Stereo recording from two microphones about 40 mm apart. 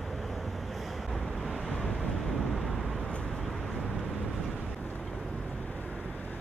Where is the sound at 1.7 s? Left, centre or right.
Left.